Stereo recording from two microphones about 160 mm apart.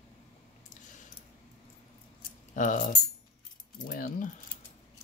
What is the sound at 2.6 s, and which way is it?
Cutlery, 50° left (ahead or behind).